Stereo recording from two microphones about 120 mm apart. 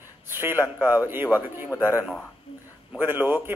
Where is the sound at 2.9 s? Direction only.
15° right (ahead or behind).